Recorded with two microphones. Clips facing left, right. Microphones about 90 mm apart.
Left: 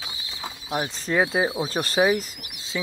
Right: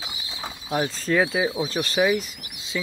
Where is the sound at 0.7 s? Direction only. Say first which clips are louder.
Right 3 dB; 20° left (ahead or behind).